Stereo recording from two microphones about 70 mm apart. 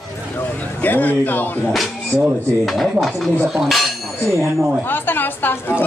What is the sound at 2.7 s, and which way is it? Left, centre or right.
Mechanisms, centre.